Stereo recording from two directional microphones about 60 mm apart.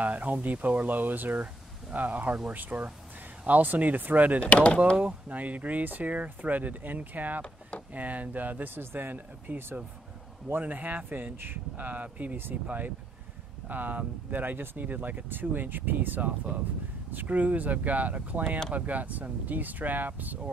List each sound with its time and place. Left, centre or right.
0.0 s speech: right
4.5 s speech: left
4.9 s speech: right